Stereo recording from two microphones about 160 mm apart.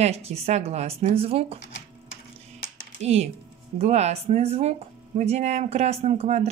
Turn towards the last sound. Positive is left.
turn(degrees=-45)  # may be behind; listen again after turning